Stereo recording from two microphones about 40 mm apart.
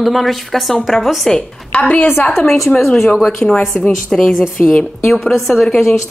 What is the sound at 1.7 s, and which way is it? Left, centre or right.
Speech, left.